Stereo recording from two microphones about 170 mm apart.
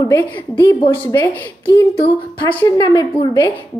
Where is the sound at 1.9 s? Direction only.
35° left (ahead or behind).